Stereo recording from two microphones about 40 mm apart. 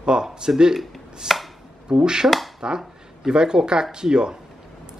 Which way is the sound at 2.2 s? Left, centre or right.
Centre.